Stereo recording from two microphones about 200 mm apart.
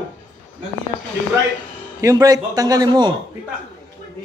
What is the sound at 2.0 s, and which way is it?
A man's voice, 15° right (ahead or behind).